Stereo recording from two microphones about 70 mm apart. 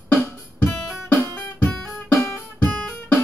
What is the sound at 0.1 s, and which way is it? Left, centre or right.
Music, left.